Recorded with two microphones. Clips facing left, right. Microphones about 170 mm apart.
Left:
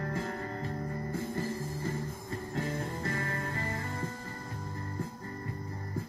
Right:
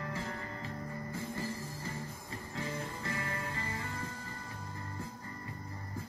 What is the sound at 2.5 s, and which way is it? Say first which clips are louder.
Music: left 4 dB; 45° left (ahead or behind).